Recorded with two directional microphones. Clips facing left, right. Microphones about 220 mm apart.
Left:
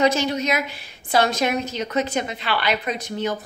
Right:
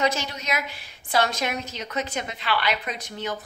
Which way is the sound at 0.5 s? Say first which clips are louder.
Left 5 dB; 25° left (ahead or behind).